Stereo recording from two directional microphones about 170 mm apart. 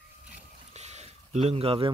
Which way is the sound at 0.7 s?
40° right (ahead or behind).